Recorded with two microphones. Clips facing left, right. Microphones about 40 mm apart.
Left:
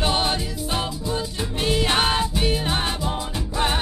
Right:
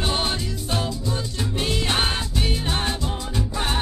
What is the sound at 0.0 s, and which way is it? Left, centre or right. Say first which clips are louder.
Music: left 2 dB; centre.